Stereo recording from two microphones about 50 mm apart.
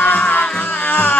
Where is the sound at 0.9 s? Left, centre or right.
Left.